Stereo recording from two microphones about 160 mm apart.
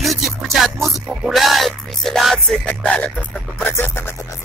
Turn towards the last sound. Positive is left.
turn(degrees=15)  # may be behind; listen again after turning